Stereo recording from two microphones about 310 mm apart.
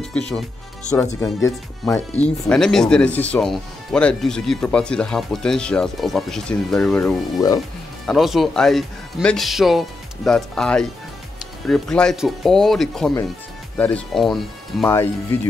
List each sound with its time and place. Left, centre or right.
1.2 s speech: centre
8.1 s speech: centre